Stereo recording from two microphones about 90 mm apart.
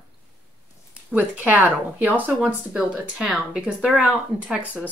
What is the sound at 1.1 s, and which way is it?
Speech, 20° right (ahead or behind).